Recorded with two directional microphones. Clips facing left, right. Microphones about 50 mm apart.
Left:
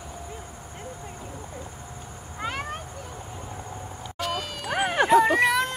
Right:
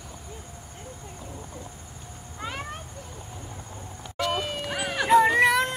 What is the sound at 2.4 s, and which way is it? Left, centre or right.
Cat, left.